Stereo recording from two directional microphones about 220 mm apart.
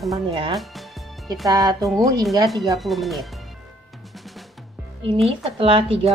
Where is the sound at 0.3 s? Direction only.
20° right (ahead or behind).